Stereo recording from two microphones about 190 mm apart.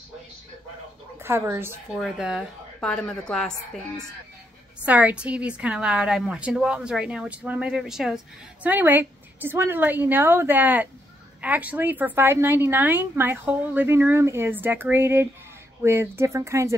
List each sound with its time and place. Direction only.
1.2 s a woman's voice: 15° right (ahead or behind); by 4.0 s 5° left (ahead or behind)
4.8 s a woman's voice: 10° right (ahead or behind)